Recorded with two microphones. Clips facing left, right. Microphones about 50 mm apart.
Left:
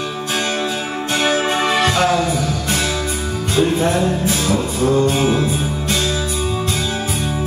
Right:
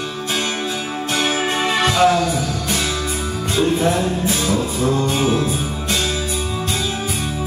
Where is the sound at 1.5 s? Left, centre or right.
Centre.